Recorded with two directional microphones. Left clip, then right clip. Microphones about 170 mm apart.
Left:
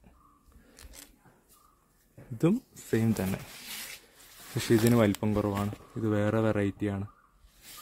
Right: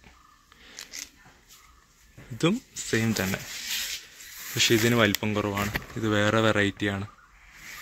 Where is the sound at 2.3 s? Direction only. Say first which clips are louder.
Right 2 dB; 15° left (ahead or behind).